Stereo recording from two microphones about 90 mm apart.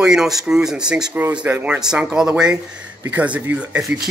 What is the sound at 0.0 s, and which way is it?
Speech, 5° right (ahead or behind).